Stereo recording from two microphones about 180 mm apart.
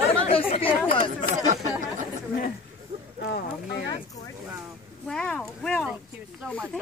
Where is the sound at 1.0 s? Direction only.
40° right (ahead or behind).